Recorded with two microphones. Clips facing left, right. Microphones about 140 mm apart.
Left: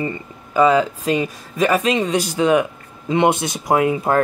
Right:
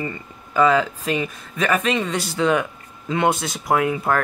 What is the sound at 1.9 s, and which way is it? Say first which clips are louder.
Speech: left 4 dB; 15° left (ahead or behind).